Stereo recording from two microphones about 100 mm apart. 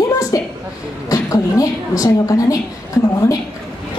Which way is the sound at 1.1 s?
35° left (ahead or behind).